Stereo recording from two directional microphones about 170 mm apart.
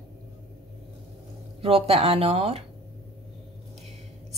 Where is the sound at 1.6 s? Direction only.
35° right (ahead or behind).